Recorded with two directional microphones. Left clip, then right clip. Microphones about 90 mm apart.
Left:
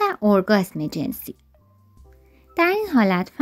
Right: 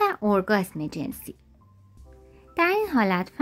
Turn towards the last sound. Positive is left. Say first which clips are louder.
# left 3 dB
turn(degrees=30)  # may be behind; listen again after turning